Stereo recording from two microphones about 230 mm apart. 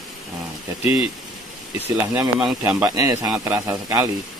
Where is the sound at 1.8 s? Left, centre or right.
Centre.